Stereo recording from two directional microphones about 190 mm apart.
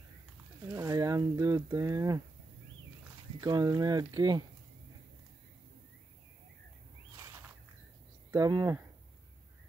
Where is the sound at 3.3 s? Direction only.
20° right (ahead or behind).